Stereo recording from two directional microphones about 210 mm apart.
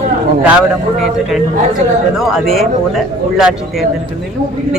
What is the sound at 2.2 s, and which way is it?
Speech, centre (ahead or behind).